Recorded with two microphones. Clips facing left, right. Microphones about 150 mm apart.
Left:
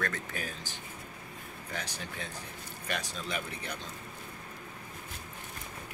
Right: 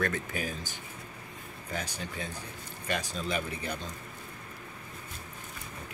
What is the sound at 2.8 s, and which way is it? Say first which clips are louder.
Speech: right 4 dB; centre (ahead or behind).